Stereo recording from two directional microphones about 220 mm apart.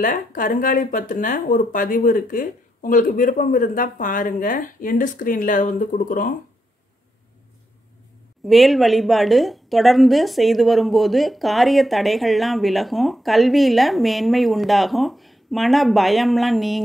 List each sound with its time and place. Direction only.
0.0 s speech: 35° left (ahead or behind)
8.5 s a woman's voice: centre (ahead or behind)